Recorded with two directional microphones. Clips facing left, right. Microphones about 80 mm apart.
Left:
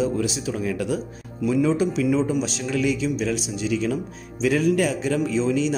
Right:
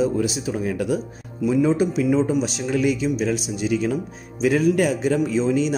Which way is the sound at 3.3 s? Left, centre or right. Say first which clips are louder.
Right 2 dB; left.